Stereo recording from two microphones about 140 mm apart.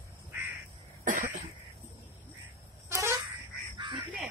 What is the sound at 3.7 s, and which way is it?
Quack, 35° right (ahead or behind).